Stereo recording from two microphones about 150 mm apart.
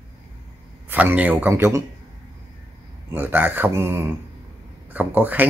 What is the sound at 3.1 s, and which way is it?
Speech, 15° right (ahead or behind).